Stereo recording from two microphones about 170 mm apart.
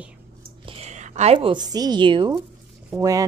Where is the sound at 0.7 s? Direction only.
40° right (ahead or behind).